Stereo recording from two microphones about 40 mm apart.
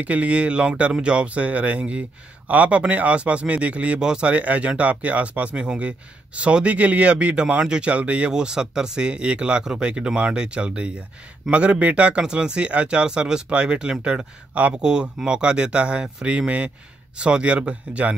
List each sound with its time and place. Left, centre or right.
0.0 s speech: right
4.0 s speech: right
4.3 s speech: right
7.6 s speech: right
7.9 s speech: right
8.3 s speech: centre; by 12.2 s right
12.2 s speech: right
14.8 s speech: centre